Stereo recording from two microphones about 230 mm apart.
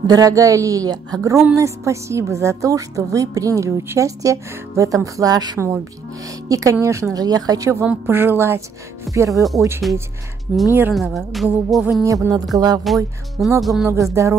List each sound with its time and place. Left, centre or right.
0.0 s a woman's voice: centre
9.8 s speech: centre
12.0 s a woman's voice: centre
12.8 s speech: centre
14.2 s a woman's voice: centre